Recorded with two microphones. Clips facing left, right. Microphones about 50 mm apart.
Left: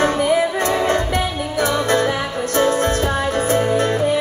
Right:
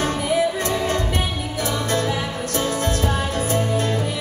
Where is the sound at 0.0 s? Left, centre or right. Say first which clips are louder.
Left 4 dB; left.